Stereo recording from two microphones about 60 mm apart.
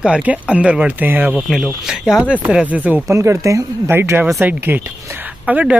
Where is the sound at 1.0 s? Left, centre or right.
Right.